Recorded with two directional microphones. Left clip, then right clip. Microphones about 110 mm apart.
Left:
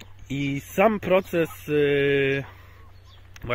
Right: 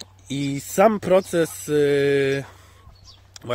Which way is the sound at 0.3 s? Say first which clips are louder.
Right 2 dB; 50° right (ahead or behind).